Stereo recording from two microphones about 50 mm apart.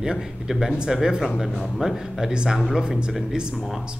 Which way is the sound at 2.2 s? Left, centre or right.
Centre.